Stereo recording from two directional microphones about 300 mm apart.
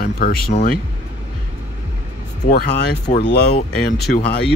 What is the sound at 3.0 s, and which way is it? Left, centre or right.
Speech, left.